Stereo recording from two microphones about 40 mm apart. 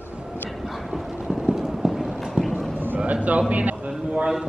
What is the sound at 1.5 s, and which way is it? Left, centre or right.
Clip-clop, centre.